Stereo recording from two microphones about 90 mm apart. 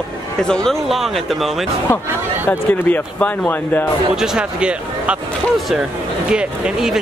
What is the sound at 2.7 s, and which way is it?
Speech, 20° left (ahead or behind).